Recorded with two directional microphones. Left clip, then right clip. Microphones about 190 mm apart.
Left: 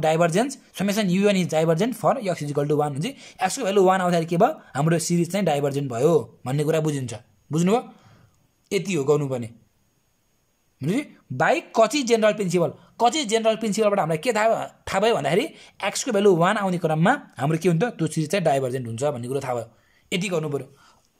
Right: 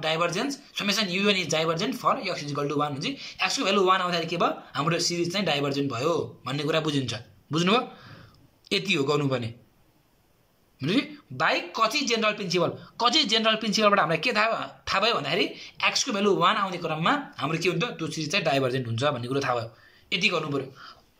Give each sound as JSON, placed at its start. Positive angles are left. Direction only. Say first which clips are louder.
{"t": 0.0, "sound": "speech", "louder": "left 6 dB", "side_deg": 45}
{"t": 10.8, "sound": "speech", "louder": "right 1 dB", "side_deg": 35}
{"t": 18.6, "sound": "speech", "louder": "left 1 dB", "side_deg": 35}